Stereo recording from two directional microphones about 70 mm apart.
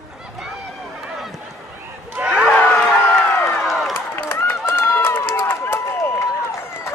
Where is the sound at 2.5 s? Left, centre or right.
Left.